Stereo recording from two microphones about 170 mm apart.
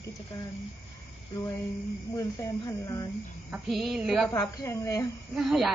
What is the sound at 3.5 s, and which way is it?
Speech, centre (ahead or behind).